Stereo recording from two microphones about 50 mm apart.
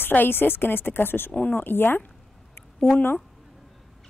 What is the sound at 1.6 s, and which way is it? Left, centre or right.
Speech, left.